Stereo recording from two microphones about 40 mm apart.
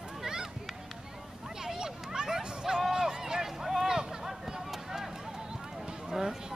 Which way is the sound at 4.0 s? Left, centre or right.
Centre.